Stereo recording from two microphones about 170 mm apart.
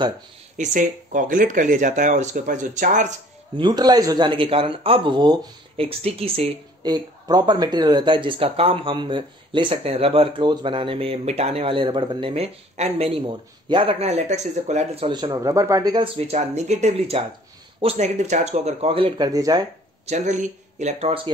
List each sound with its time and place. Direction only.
0.6 s speech: 50° right (ahead or behind)
3.5 s speech: 25° right (ahead or behind)
6.9 s speech: 25° right (ahead or behind); by 15.0 s 40° right (ahead or behind)
15.0 s speech: 25° right (ahead or behind)
16.2 s speech: 40° right (ahead or behind); by 19.6 s 20° right (ahead or behind)
20.1 s speech: 45° right (ahead or behind)